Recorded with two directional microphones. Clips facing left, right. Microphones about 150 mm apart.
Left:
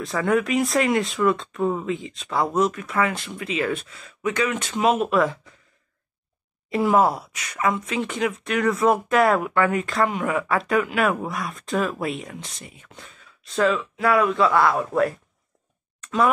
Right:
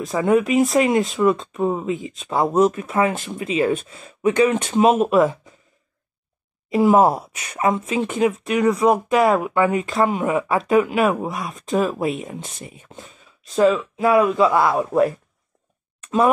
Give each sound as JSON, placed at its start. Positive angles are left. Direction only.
{"t": 0.0, "sound": "speech", "side_deg": -20}
{"t": 6.7, "sound": "speech", "side_deg": -20}